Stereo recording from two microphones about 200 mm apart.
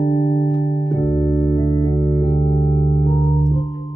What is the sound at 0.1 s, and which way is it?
Music, 20° left (ahead or behind).